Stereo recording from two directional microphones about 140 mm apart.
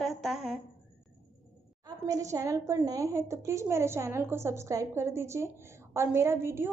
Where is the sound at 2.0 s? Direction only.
25° right (ahead or behind).